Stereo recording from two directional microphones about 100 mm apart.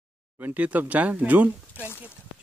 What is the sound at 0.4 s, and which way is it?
Speech, 15° right (ahead or behind).